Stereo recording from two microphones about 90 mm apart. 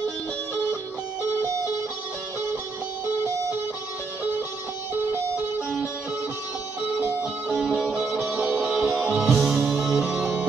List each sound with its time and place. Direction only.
7.0 s music: 20° right (ahead or behind)
7.4 s music: 10° right (ahead or behind)